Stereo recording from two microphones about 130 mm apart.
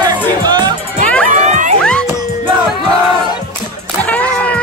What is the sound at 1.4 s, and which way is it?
Music, 65° right (ahead or behind).